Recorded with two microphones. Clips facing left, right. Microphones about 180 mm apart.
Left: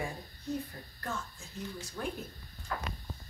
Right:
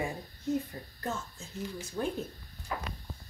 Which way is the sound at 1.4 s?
25° right (ahead or behind).